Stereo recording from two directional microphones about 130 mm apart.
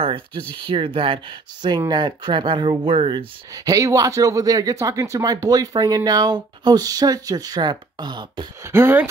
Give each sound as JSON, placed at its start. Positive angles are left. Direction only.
{"t": 0.0, "sound": "speech", "side_deg": -40}
{"t": 3.5, "sound": "speech", "side_deg": -25}
{"t": 8.6, "sound": "speech", "side_deg": -15}